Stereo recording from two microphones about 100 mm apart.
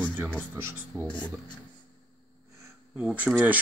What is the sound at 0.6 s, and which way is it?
Speech, 25° right (ahead or behind).